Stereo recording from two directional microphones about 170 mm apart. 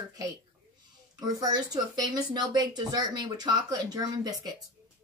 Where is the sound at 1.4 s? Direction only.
25° right (ahead or behind).